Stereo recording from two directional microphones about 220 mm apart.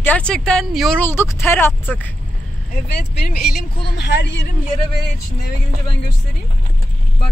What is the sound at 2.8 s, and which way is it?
Speech, 45° left (ahead or behind).